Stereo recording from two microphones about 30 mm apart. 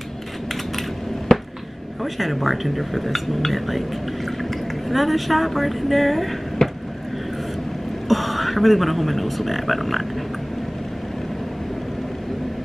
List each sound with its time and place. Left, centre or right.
2.0 s speech: centre
6.6 s a sound: left
8.1 s speech: centre